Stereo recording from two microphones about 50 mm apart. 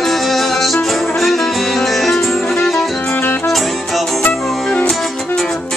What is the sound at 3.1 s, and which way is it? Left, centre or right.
Music, left.